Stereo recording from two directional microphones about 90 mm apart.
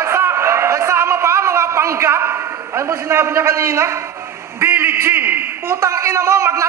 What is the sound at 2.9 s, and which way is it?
A man's voice, 30° right (ahead or behind).